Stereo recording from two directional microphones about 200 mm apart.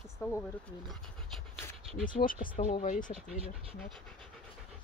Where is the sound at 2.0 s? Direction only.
45° left (ahead or behind).